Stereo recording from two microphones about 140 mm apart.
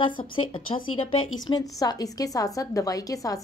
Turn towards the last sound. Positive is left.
turn(degrees=25)  # may be behind; listen again after turning